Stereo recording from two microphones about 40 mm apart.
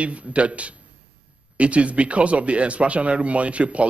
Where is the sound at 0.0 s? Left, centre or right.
Right.